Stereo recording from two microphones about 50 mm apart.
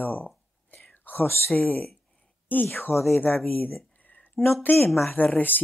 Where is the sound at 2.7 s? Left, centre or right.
Left.